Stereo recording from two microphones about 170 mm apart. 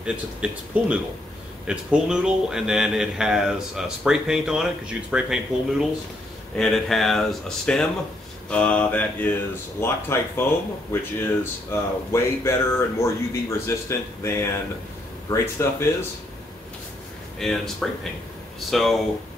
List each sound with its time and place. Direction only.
0.0 s speech: 5° right (ahead or behind); by 15.9 s 15° left (ahead or behind)
17.4 s speech: centre (ahead or behind)